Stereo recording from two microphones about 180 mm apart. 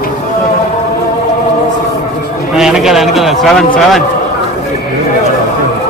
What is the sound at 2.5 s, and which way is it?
A man's voice, centre (ahead or behind).